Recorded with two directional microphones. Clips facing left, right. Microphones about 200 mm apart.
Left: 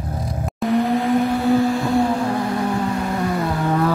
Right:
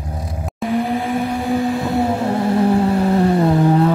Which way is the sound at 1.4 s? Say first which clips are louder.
Left 2 dB; 15° right (ahead or behind).